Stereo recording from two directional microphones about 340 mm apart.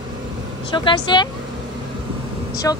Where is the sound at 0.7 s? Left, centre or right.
Centre.